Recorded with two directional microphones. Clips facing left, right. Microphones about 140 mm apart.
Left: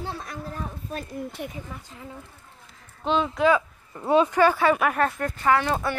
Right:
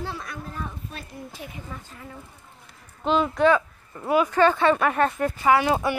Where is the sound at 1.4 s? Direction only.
60° left (ahead or behind).